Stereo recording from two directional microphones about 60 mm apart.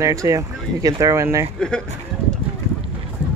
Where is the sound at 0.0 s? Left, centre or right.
Right.